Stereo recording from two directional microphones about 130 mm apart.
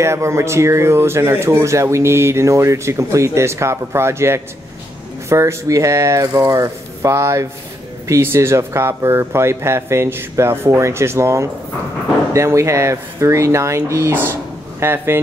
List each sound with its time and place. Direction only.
0.0 s speech: 20° right (ahead or behind)